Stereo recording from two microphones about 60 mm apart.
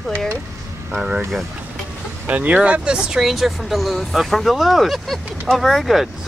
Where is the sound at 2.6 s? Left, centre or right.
Centre.